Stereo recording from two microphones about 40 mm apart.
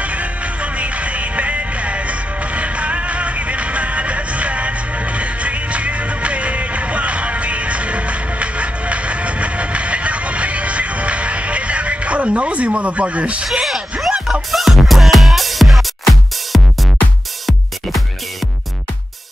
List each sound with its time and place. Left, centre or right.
0.0 s music: right
13.7 s a sound: centre
14.5 s music: centre